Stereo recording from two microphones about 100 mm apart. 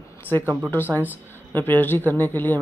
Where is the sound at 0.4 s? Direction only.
20° right (ahead or behind).